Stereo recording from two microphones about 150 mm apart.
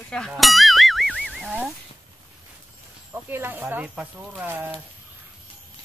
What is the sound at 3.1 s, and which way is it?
Speech, 15° right (ahead or behind).